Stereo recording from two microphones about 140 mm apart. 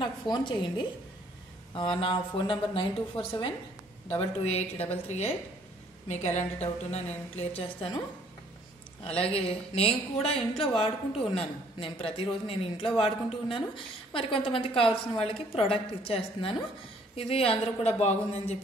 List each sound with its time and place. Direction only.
0.0 s a man's voice: 35° left (ahead or behind)
6.0 s speech: 55° left (ahead or behind)
9.0 s a man's voice: 45° left (ahead or behind)